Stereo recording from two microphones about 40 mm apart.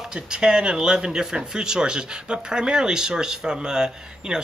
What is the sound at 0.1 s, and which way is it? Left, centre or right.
Speech, right.